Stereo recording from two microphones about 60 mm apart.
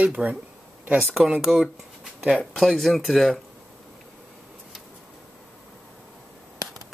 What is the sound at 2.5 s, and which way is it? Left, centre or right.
Speech, centre.